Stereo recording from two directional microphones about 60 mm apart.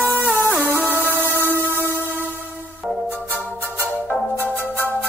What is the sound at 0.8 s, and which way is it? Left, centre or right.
Music, right.